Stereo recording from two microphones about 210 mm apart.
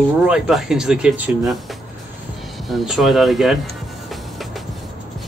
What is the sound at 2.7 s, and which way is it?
Speech, centre (ahead or behind).